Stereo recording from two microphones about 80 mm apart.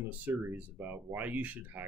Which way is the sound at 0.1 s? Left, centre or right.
Right.